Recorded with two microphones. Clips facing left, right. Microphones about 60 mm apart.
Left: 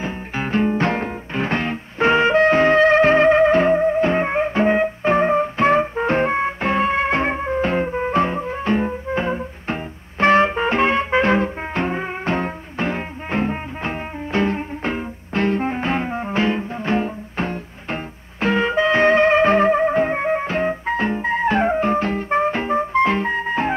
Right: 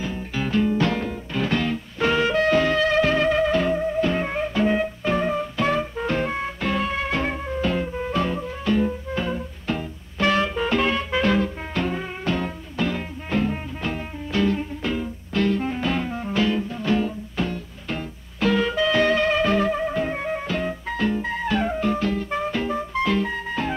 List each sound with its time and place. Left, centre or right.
0.0 s music: left